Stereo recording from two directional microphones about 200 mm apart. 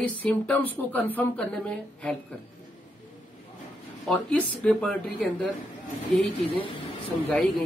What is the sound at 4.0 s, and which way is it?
Speech, centre (ahead or behind).